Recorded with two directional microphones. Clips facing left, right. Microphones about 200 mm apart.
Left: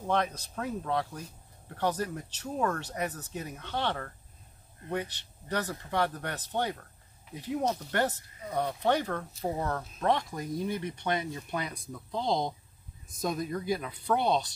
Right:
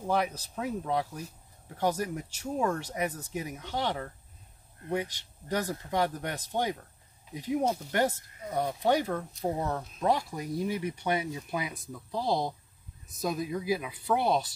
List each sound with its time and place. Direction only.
0.0 s speech: 10° right (ahead or behind)